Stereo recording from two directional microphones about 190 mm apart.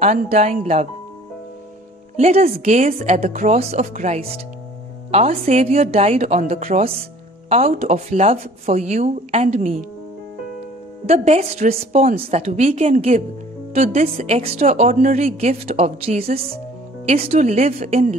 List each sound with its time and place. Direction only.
0.0 s a woman's voice: 35° right (ahead or behind)
2.1 s a woman's voice: 35° right (ahead or behind)
11.1 s a woman's voice: 35° right (ahead or behind)